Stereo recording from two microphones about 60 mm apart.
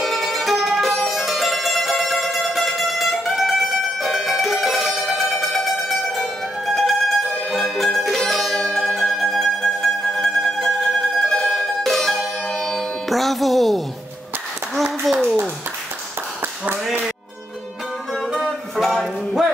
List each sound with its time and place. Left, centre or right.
0.0 s music: centre
8.6 s mandolin: centre
11.2 s music: centre
14.8 s a sound: centre
16.3 s tap: right
18.1 s music: centre